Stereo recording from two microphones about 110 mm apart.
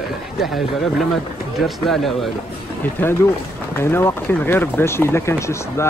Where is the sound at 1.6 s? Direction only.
Centre (ahead or behind).